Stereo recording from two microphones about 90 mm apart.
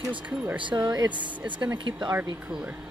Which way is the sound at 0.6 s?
55° right (ahead or behind).